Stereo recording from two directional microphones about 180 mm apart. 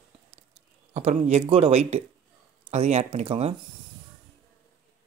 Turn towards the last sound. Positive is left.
turn(degrees=-35)  # may be behind; listen again after turning